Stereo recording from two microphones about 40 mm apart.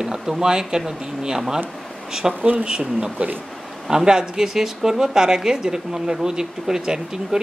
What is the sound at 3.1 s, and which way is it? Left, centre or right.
Speech, right.